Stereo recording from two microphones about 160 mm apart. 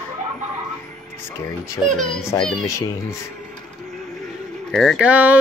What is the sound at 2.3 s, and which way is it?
Speech, 5° left (ahead or behind).